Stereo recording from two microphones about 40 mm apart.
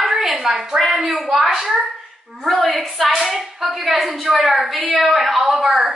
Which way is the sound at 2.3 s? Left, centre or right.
Centre.